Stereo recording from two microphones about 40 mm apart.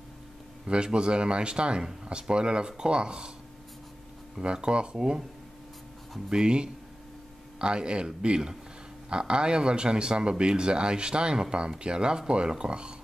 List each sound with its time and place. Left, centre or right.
0.9 s speech: right
4.4 s speech: right
6.2 s speech: centre